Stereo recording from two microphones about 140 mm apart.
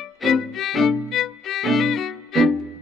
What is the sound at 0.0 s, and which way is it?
Music, centre (ahead or behind).